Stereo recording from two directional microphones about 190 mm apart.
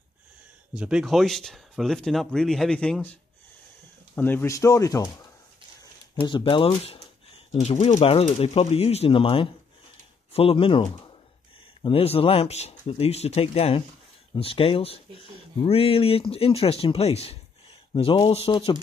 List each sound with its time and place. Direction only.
0.7 s speech: 5° right (ahead or behind)
4.1 s speech: 10° left (ahead or behind)
6.1 s speech: 25° left (ahead or behind)